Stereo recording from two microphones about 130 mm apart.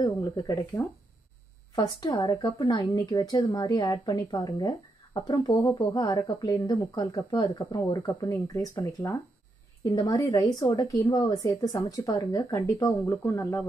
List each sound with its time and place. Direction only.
0.0 s a woman's voice: 25° left (ahead or behind)